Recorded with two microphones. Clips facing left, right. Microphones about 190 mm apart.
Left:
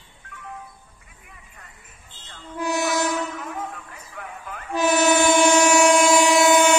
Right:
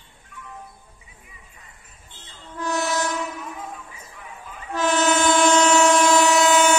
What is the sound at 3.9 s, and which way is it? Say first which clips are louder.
Music: left 4 dB; 60° left (ahead or behind).